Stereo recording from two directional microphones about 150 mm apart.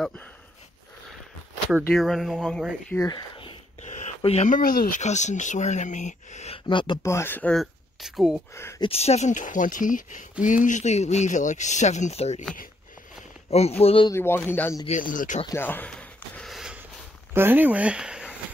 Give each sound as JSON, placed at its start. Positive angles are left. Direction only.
{"t": 2.0, "sound": "speech", "side_deg": 0}
{"t": 3.1, "sound": "speech", "side_deg": 35}
{"t": 4.5, "sound": "speech", "side_deg": 70}
{"t": 5.0, "sound": "speech", "side_deg": 50}
{"t": 7.0, "sound": "speech", "side_deg": 20}
{"t": 7.5, "sound": "speech", "side_deg": 0}
{"t": 8.5, "sound": "speech", "side_deg": 15}
{"t": 8.8, "sound": "speech", "side_deg": 45}
{"t": 13.5, "sound": "speech", "side_deg": 45}
{"t": 14.1, "sound": "speech", "side_deg": 15}
{"t": 14.9, "sound": "speech", "side_deg": 60}
{"t": 15.4, "sound": "speech", "side_deg": 15}
{"t": 16.3, "sound": "a sound", "side_deg": 0}
{"t": 17.3, "sound": "speech", "side_deg": -15}